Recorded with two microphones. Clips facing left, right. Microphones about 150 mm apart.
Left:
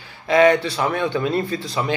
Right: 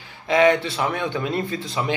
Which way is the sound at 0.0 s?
20° right (ahead or behind).